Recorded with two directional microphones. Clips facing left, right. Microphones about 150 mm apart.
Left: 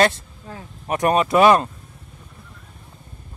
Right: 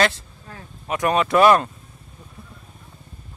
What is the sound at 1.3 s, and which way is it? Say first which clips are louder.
Speech: even; 15° left (ahead or behind).